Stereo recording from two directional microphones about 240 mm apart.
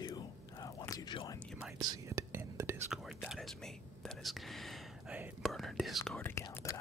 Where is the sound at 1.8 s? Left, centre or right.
Centre.